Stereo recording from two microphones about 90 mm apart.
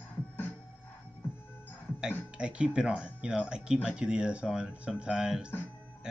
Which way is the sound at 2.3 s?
10° right (ahead or behind).